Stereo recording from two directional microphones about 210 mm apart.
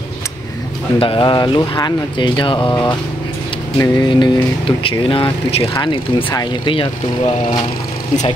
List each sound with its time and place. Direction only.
0.9 s speech: 25° left (ahead or behind)